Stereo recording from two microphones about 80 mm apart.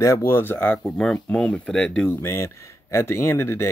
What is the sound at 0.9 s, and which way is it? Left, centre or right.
Speech, centre.